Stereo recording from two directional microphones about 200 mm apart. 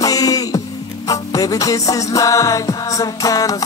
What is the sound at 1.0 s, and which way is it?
Music, 15° left (ahead or behind).